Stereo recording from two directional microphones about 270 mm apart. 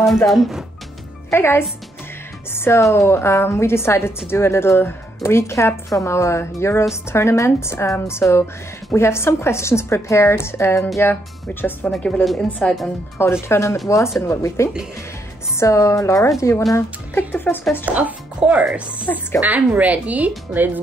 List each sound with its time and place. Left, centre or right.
0.3 s speech: centre
17.8 s speech: centre